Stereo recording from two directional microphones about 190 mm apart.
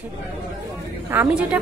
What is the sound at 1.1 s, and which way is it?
Speech, 5° right (ahead or behind).